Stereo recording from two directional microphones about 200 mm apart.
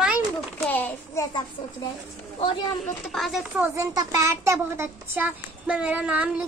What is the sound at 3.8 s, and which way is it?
A child's voice, 15° right (ahead or behind).